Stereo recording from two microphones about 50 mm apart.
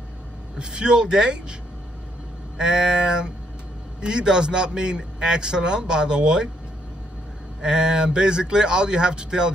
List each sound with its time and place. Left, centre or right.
0.6 s a man's voice: centre
7.6 s a man's voice: centre